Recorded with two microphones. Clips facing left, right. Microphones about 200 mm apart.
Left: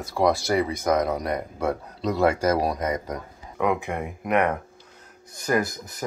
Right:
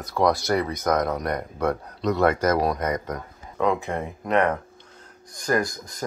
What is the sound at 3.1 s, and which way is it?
Speech, 15° left (ahead or behind).